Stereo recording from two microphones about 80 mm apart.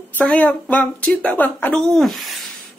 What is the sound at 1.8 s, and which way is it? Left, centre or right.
Speech, centre.